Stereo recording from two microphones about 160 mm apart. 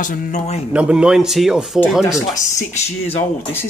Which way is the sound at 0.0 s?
55° left (ahead or behind).